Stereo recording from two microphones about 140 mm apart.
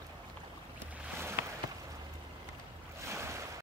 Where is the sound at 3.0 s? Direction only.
20° right (ahead or behind).